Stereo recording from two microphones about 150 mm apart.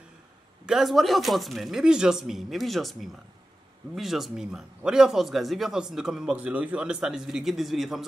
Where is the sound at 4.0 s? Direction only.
Centre (ahead or behind).